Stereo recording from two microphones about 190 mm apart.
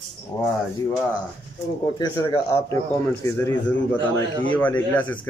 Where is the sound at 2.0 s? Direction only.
20° left (ahead or behind).